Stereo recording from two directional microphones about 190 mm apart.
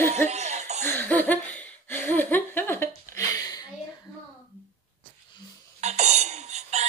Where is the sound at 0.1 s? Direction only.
35° right (ahead or behind).